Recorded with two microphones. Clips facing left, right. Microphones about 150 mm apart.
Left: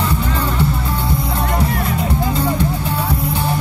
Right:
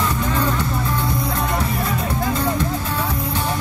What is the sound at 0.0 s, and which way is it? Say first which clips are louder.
Music: left 1 dB; 30° left (ahead or behind).